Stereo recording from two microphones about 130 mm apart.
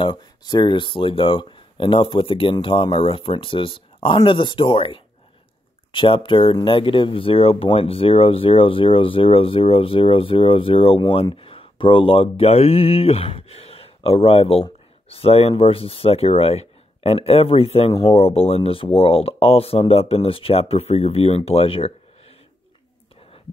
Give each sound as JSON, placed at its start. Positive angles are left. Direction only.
{"t": 0.0, "sound": "speech", "side_deg": 35}